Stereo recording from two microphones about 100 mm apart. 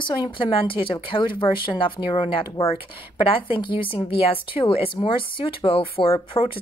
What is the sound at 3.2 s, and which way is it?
A woman's voice, 60° left (ahead or behind).